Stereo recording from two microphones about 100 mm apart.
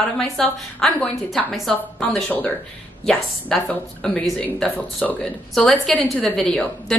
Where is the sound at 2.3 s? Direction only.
20° left (ahead or behind).